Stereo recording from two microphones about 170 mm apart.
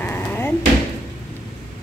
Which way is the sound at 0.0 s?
10° left (ahead or behind).